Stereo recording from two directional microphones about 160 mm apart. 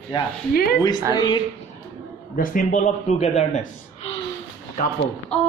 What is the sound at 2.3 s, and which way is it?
A man's voice, 60° left (ahead or behind).